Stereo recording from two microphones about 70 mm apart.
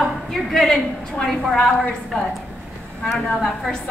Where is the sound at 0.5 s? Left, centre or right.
Centre.